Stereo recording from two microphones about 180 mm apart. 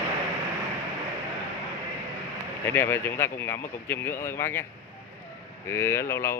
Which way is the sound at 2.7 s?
10° left (ahead or behind).